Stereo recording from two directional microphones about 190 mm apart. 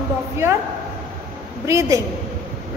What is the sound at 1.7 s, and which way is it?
Speech, 15° right (ahead or behind).